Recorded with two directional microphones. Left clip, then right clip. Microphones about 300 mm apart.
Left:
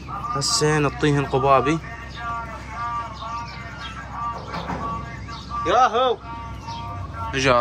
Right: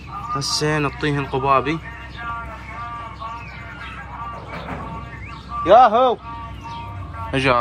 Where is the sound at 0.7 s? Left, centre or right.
Centre.